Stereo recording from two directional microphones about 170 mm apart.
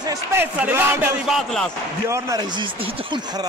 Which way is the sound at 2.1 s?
20° right (ahead or behind).